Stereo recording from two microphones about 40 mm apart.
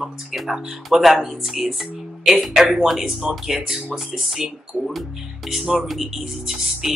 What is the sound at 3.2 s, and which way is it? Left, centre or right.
Speech, centre.